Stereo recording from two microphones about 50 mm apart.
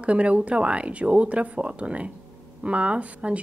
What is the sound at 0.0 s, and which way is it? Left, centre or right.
A woman's voice, right.